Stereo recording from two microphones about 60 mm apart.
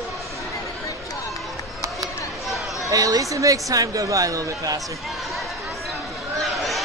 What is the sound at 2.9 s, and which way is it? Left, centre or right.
Speech, right.